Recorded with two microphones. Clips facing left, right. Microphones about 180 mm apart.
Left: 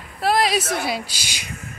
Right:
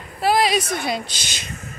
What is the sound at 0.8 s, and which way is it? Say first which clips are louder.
Speech: right 1 dB; 5° left (ahead or behind).